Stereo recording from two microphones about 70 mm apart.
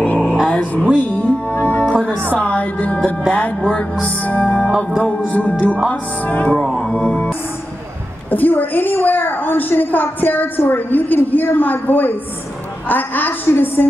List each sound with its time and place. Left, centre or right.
0.0 s a sound: centre
0.5 s music: centre
2.3 s a woman's voice: left
4.6 s music: centre
5.2 s a woman's voice: left
6.5 s speech: centre
8.3 s a woman's voice: left